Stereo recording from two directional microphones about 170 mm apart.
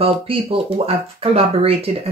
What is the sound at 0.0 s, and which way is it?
Speech, 35° right (ahead or behind).